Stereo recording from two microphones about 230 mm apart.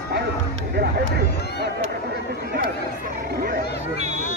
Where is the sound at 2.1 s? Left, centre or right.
Right.